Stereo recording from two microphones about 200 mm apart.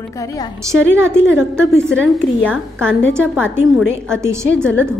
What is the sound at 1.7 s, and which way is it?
Speech, 5° left (ahead or behind).